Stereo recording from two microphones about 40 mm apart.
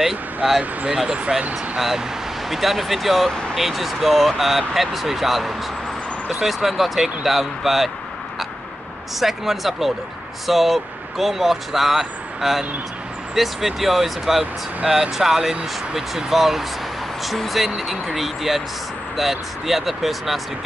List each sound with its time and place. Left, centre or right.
0.6 s speech: centre
1.8 s speech: centre
9.2 s speech: centre